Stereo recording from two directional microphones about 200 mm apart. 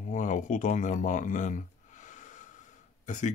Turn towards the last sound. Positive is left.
turn(degrees=35)  # may be behind; listen again after turning